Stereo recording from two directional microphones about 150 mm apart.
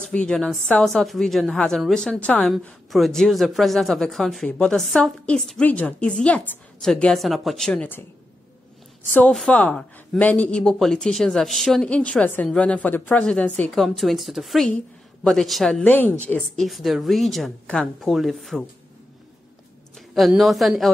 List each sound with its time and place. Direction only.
0.0 s a woman's voice: 5° left (ahead or behind)
9.1 s a woman's voice: 5° left (ahead or behind)
20.2 s a woman's voice: centre (ahead or behind)